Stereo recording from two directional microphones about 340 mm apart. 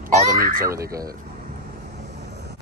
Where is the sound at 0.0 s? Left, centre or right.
Right.